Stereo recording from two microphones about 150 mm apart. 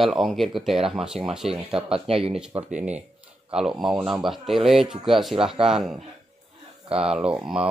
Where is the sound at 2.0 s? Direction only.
40° right (ahead or behind).